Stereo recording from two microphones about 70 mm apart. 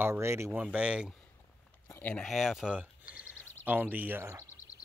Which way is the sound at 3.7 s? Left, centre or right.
Right.